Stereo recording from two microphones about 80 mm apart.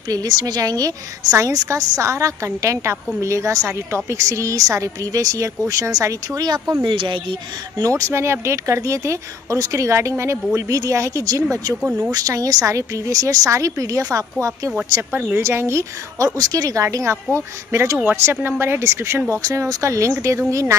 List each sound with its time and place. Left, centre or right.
0.1 s a woman's voice: right
6.8 s speech: right
7.8 s a woman's voice: right
15.3 s speech: right
16.3 s speech: right
19.4 s speech: right